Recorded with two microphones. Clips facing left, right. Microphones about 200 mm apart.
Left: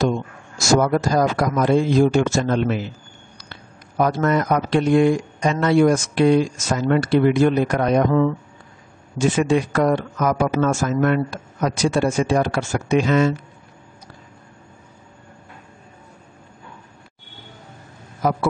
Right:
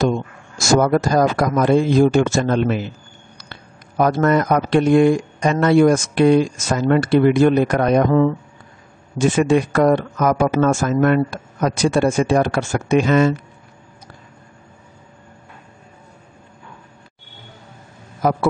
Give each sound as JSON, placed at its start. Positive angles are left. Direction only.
{"t": 0.6, "sound": "speech", "side_deg": -55}
{"t": 4.0, "sound": "speech", "side_deg": -55}